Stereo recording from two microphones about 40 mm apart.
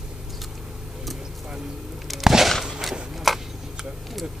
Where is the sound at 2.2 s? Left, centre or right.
Centre.